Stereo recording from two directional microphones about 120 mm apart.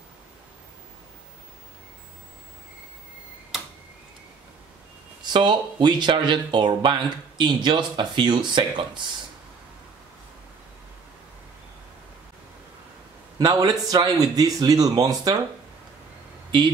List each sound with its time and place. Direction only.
5.2 s speech: 40° right (ahead or behind)
13.4 s speech: 30° right (ahead or behind)